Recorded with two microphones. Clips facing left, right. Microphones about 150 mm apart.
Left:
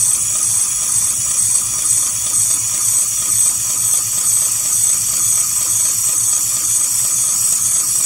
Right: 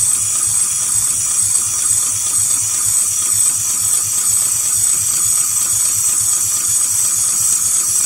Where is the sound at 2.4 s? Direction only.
10° left (ahead or behind).